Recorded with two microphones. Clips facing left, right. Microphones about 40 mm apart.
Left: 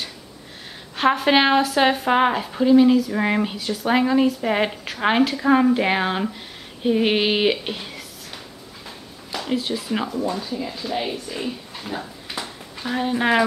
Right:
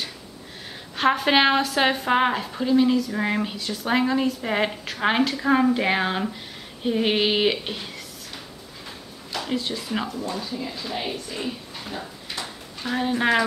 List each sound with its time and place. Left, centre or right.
0.9 s a woman's voice: centre
9.3 s a woman's voice: centre
11.9 s a sound: centre